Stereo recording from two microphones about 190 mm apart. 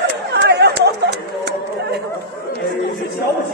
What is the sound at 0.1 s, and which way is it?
Chatter, 60° right (ahead or behind).